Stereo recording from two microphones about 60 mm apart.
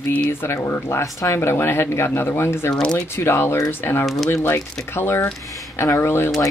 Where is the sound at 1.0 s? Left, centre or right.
Left.